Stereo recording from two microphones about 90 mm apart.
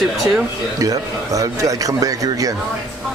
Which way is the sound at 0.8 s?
40° right (ahead or behind).